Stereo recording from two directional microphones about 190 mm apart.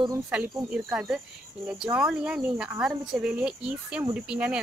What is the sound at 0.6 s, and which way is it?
Speech, 5° right (ahead or behind).